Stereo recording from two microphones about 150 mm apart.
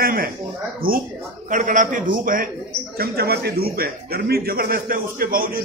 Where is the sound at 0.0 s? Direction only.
80° right.